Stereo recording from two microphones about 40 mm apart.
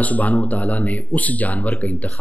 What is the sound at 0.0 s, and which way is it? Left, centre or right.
Speech, left.